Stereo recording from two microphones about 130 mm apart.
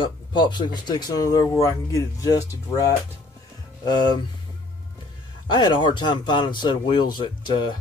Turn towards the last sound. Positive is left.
turn(degrees=35)  # may be behind; listen again after turning